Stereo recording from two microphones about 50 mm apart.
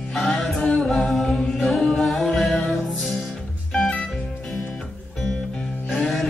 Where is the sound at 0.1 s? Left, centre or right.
Centre.